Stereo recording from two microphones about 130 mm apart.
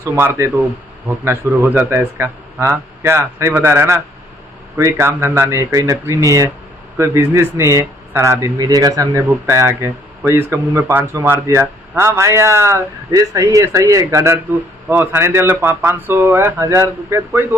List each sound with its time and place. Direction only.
0.0 s a man's voice: 20° right (ahead or behind)